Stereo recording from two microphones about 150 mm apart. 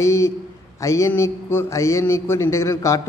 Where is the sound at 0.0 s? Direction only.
20° left (ahead or behind).